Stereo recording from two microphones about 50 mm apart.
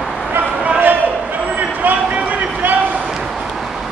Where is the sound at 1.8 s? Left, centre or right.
Right.